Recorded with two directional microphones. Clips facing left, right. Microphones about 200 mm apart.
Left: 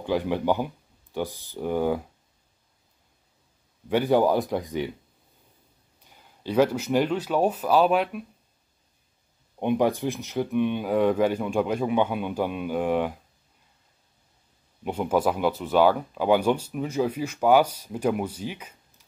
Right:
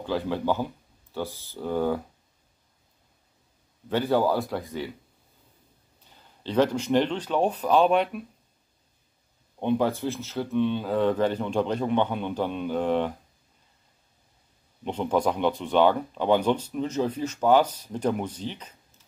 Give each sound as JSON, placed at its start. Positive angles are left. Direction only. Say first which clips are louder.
{"t": 0.0, "sound": "speech", "louder": "left 2 dB", "side_deg": 15}
{"t": 3.9, "sound": "speech", "louder": "left 3 dB", "side_deg": 15}
{"t": 6.0, "sound": "speech", "louder": "left 3 dB", "side_deg": 10}
{"t": 9.6, "sound": "speech", "louder": "left 1 dB", "side_deg": 15}
{"t": 14.8, "sound": "speech", "louder": "left 1 dB", "side_deg": 10}